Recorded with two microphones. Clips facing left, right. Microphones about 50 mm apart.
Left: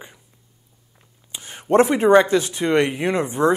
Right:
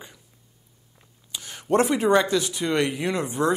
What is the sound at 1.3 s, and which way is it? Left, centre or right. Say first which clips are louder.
A man's voice: left 5 dB; left.